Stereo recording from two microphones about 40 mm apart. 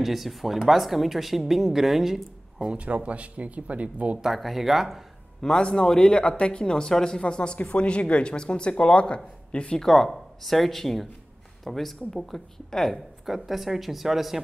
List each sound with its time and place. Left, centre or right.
0.0 s speech: centre
2.6 s speech: right
4.3 s speech: centre
5.4 s a man's voice: centre
6.1 s speech: left
9.8 s speech: centre